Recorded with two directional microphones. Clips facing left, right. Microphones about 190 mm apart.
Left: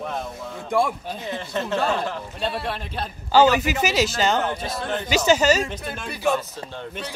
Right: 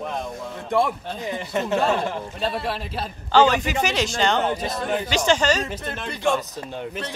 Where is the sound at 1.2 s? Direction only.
15° right (ahead or behind).